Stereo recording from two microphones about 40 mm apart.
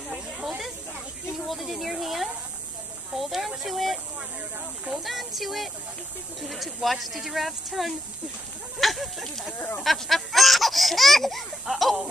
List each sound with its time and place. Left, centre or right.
0.1 s snake: right
1.5 s speech: centre
5.0 s speech: centre
8.7 s a sound: centre
9.8 s baby laughter: centre
11.6 s laughter: centre